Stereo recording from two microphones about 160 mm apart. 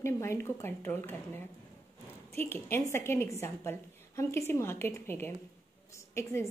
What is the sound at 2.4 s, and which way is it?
A woman's voice, 15° left (ahead or behind).